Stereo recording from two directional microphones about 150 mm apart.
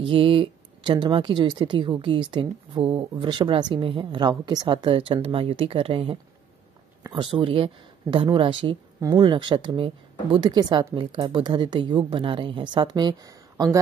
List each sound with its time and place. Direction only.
0.0 s speech: 35° right (ahead or behind)